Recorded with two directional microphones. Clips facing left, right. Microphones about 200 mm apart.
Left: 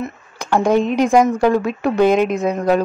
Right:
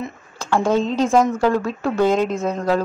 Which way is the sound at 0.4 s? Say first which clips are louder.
Left 3 dB; 15° left (ahead or behind).